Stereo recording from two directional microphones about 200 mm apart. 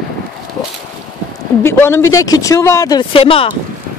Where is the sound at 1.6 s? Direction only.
10° left (ahead or behind); by 3.5 s 30° left (ahead or behind).